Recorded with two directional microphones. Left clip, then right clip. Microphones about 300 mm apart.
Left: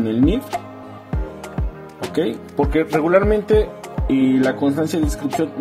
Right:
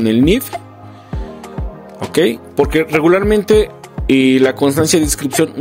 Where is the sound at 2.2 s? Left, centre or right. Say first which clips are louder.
Right 7 dB; right.